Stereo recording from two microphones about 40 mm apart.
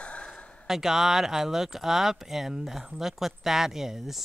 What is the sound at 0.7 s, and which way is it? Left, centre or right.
Speech, centre.